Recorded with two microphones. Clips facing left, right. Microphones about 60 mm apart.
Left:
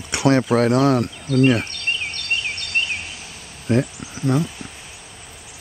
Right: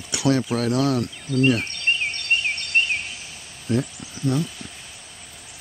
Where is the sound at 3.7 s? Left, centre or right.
Left.